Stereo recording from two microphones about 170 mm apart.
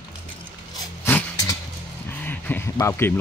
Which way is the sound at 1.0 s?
10° left (ahead or behind).